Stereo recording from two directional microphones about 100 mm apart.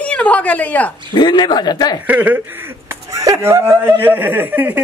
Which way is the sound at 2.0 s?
15° right (ahead or behind).